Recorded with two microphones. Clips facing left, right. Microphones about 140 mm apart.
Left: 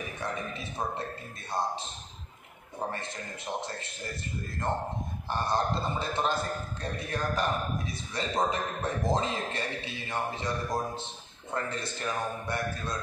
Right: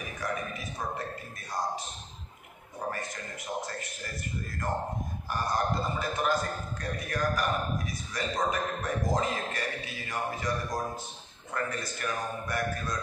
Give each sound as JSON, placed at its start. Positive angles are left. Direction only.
{"t": 0.2, "sound": "a man's voice", "side_deg": 25}
{"t": 2.9, "sound": "a man's voice", "side_deg": 25}
{"t": 5.3, "sound": "a man's voice", "side_deg": 25}